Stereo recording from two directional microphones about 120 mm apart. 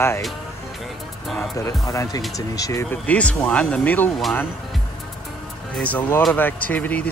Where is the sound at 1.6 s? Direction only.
25° left (ahead or behind).